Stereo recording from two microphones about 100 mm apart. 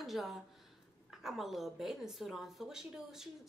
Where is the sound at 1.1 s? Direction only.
5° right (ahead or behind).